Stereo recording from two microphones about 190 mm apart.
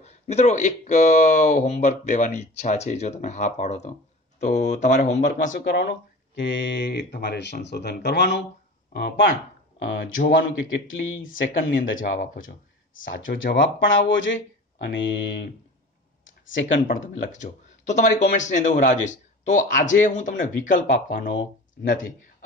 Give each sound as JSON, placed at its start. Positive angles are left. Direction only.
{"t": 0.0, "sound": "speech", "side_deg": 35}
{"t": 5.5, "sound": "speech", "side_deg": 65}
{"t": 9.8, "sound": "speech", "side_deg": 70}
{"t": 10.3, "sound": "speech", "side_deg": 90}
{"t": 12.0, "sound": "speech", "side_deg": 45}
{"t": 13.0, "sound": "speech", "side_deg": 85}
{"t": 14.8, "sound": "speech", "side_deg": 65}
{"t": 16.5, "sound": "speech", "side_deg": 75}
{"t": 16.8, "sound": "speech", "side_deg": 40}